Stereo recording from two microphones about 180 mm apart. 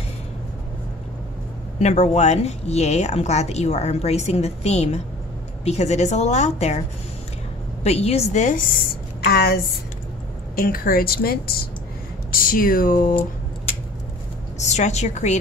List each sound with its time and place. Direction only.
1.8 s speech: 40° left (ahead or behind)
7.8 s speech: 35° left (ahead or behind)
9.2 s a woman's voice: 60° left (ahead or behind)
10.6 s a woman's voice: 55° left (ahead or behind)
14.7 s speech: 40° left (ahead or behind)